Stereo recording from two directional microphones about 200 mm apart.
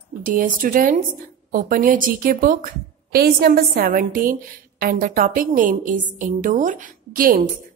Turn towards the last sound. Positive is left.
turn(degrees=-45)  # may be behind; listen again after turning